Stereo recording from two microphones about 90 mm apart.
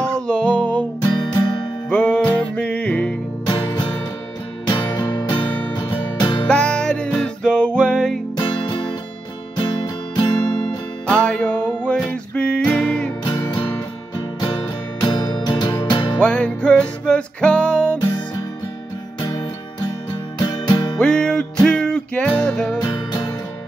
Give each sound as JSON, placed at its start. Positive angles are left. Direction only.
{"t": 0.0, "sound": "music", "side_deg": 10}
{"t": 1.0, "sound": "music", "side_deg": 50}
{"t": 1.9, "sound": "music", "side_deg": 10}
{"t": 3.4, "sound": "music", "side_deg": 50}
{"t": 6.4, "sound": "music", "side_deg": 10}
{"t": 8.4, "sound": "music", "side_deg": 55}
{"t": 11.1, "sound": "music", "side_deg": 10}
{"t": 13.2, "sound": "music", "side_deg": 50}
{"t": 15.0, "sound": "music", "side_deg": 50}
{"t": 16.2, "sound": "music", "side_deg": 10}
{"t": 19.2, "sound": "music", "side_deg": 50}
{"t": 21.0, "sound": "music", "side_deg": 10}
{"t": 22.8, "sound": "music", "side_deg": 45}